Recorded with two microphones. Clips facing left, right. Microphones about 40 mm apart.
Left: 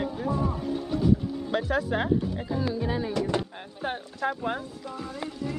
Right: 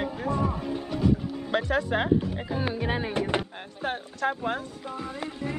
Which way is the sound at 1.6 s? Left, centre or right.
Centre.